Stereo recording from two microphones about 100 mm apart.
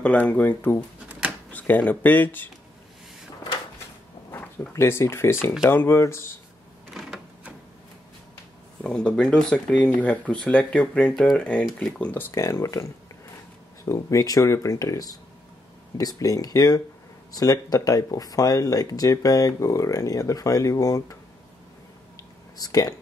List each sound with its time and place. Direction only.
0.0 s speech: 15° left (ahead or behind)
4.3 s speech: 25° left (ahead or behind)
6.9 s printer: 5° right (ahead or behind)
8.8 s speech: 10° left (ahead or behind)
12.1 s speech: 25° left (ahead or behind)
13.8 s speech: 30° left (ahead or behind)
22.6 s speech: 40° left (ahead or behind)